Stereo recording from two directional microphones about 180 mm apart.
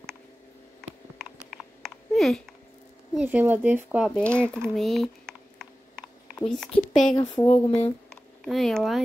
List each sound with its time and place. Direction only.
1.8 s a sound: centre (ahead or behind)
3.2 s speech: 10° right (ahead or behind)
4.2 s speech: 5° left (ahead or behind)
7.2 s speech: 20° left (ahead or behind)
7.4 s speech: 35° left (ahead or behind)
8.1 s a sound: centre (ahead or behind)